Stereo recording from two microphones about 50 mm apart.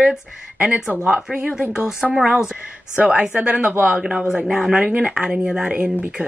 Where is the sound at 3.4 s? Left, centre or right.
Centre.